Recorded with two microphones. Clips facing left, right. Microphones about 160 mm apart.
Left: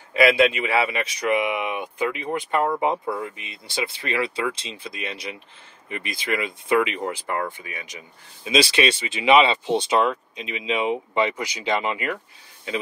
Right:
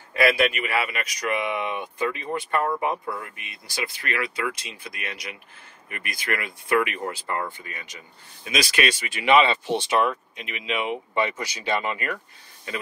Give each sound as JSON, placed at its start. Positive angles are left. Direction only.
{"t": 0.1, "sound": "speech", "side_deg": 20}
{"t": 8.5, "sound": "speech", "side_deg": 25}